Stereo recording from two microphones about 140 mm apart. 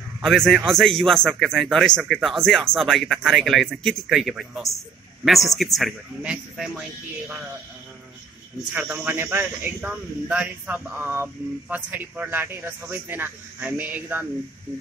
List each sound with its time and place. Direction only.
0.2 s speech: centre (ahead or behind)
8.7 s speech: 15° right (ahead or behind)